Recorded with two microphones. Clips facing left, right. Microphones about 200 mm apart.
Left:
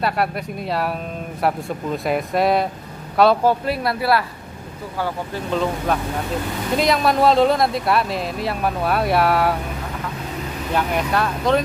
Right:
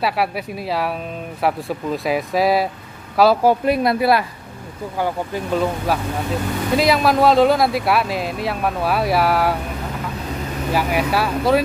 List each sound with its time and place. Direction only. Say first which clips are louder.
0.0 s speech: right 1 dB; 5° right (ahead or behind)
3.6 s speech: right 5 dB; 20° right (ahead or behind); by 9.6 s centre (ahead or behind)
10.7 s speech: right 2 dB; 5° right (ahead or behind)